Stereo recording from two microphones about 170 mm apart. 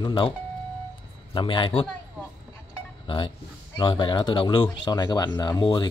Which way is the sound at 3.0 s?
30° left (ahead or behind).